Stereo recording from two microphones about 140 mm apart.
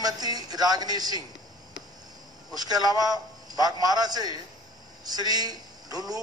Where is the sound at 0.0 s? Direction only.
25° right (ahead or behind).